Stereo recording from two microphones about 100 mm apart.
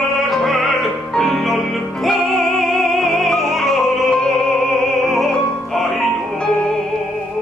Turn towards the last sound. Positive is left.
turn(degrees=5)  # may be behind; listen again after turning